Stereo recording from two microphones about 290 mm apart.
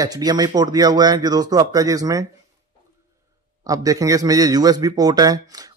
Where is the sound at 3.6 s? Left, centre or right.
Centre.